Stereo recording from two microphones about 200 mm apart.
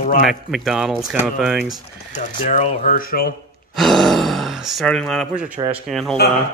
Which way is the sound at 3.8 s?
Centre (ahead or behind).